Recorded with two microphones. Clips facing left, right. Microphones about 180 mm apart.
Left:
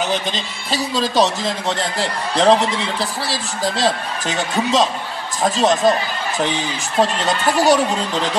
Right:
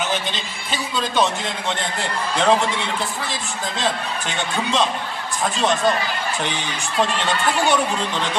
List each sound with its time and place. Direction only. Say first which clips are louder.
0.0 s a man's voice: left 3 dB; 35° left (ahead or behind)
7.0 s a man's voice: left 3 dB; 40° left (ahead or behind)